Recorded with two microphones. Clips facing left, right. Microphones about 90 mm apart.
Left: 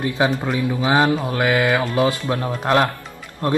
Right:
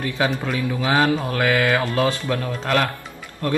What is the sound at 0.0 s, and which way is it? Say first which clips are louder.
Speech: left 3 dB; 20° left (ahead or behind).